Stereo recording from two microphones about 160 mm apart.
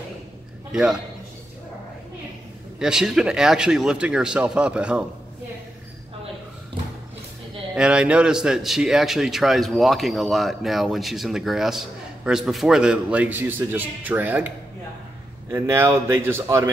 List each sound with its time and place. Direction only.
0.7 s a man's voice: 5° right (ahead or behind)
2.8 s a man's voice: 5° right (ahead or behind)
7.7 s a man's voice: 5° right (ahead or behind)
15.5 s speech: 15° right (ahead or behind)